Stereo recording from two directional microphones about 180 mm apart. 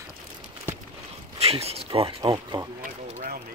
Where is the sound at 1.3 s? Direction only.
35° right (ahead or behind).